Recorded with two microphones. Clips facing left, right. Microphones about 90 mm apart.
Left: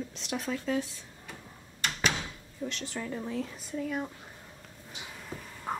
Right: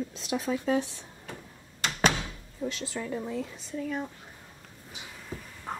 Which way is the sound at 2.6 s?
10° right (ahead or behind).